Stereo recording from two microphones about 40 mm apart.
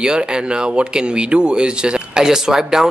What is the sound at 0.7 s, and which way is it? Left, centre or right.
A man's voice, right.